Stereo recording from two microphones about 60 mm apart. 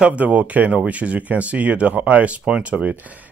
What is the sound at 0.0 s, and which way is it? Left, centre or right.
Speech, right.